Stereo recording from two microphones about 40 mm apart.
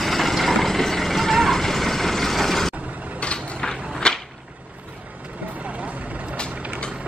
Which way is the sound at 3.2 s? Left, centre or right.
Left.